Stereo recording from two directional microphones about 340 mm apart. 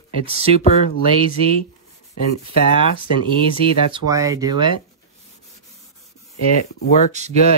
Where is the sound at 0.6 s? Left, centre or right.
Left.